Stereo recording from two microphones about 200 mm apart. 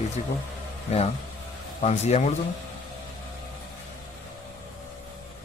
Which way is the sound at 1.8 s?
35° left (ahead or behind).